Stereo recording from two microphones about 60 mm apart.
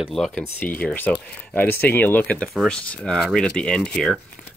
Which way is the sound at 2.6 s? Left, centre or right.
Centre.